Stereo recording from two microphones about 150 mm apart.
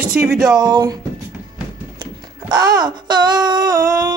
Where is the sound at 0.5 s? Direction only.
30° right (ahead or behind).